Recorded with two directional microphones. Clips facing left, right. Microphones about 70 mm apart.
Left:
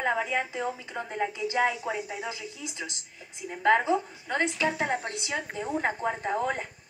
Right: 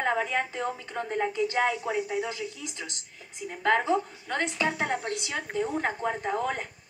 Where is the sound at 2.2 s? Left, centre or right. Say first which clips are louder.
Right 2 dB; centre.